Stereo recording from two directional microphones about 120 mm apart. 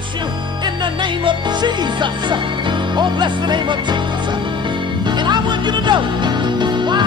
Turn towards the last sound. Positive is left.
turn(degrees=-40)  # may be behind; listen again after turning